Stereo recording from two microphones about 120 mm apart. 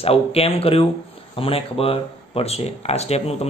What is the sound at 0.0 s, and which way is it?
Speech, 55° left (ahead or behind).